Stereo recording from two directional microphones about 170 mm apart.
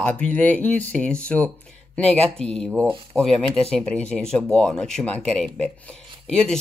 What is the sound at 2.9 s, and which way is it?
Speech, 30° right (ahead or behind).